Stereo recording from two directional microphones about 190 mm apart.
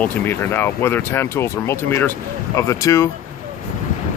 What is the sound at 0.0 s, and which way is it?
Speech, 10° left (ahead or behind).